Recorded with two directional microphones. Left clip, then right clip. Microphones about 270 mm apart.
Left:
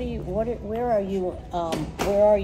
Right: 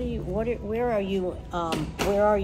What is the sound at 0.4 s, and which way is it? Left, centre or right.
Speech, right.